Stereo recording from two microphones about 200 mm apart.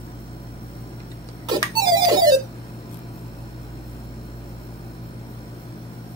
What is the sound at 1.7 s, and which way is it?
Music, 20° right (ahead or behind).